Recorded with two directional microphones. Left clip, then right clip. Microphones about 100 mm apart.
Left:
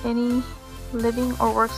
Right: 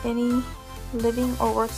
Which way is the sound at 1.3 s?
10° right (ahead or behind).